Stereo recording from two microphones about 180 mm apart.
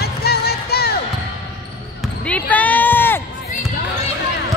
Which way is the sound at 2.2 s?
10° left (ahead or behind).